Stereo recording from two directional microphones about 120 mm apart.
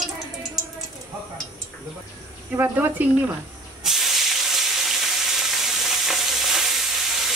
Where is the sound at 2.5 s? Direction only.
15° right (ahead or behind).